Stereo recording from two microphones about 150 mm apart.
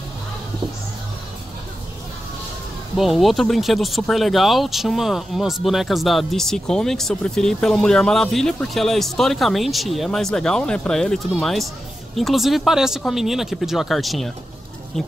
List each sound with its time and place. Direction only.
3.0 s speech: centre (ahead or behind)